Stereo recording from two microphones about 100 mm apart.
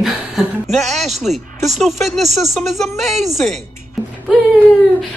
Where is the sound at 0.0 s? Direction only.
Centre (ahead or behind).